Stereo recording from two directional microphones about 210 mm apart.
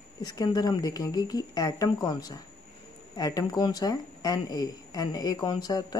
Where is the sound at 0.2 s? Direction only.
20° left (ahead or behind).